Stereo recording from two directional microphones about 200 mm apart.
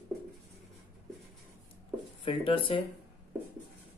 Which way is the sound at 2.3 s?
25° left (ahead or behind).